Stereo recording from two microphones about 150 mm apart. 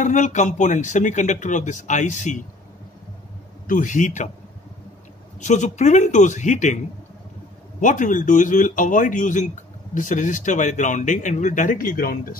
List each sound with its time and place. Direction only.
0.0 s speech: 55° left (ahead or behind)
3.6 s speech: 60° left (ahead or behind)
5.4 s speech: 55° left (ahead or behind)
7.8 s speech: 60° left (ahead or behind)